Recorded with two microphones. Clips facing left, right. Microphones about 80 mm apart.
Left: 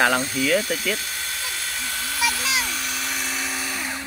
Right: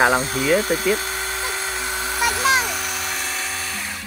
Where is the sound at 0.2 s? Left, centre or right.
Right.